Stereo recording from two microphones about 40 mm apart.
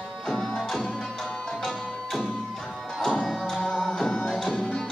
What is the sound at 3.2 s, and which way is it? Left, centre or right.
Music, centre.